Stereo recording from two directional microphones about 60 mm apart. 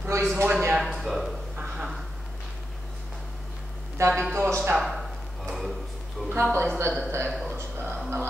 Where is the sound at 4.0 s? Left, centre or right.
Right.